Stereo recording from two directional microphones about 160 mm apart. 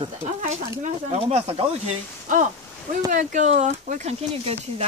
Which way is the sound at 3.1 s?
50° right (ahead or behind).